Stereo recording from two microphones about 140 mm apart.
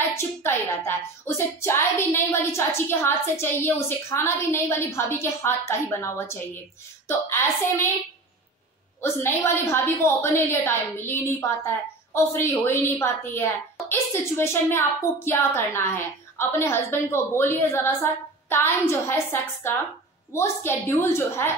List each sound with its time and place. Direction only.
0.1 s speech: 20° left (ahead or behind)
9.0 s speech: 20° left (ahead or behind)